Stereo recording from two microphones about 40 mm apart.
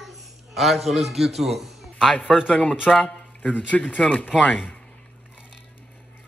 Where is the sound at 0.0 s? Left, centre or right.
Centre.